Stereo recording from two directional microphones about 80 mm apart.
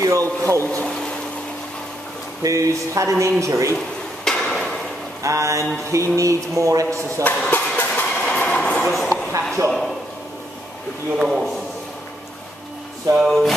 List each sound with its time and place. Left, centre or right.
0.0 s speech: right
0.7 s speech: centre
2.4 s speech: right
3.7 s hammer: centre
5.2 s speech: right
7.2 s vehicle: left
8.9 s a sound: centre
11.1 s a sound: centre
13.2 s a sound: centre